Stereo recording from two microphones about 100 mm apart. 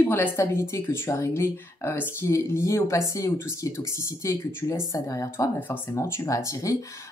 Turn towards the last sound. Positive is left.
turn(degrees=35)  # may be behind; listen again after turning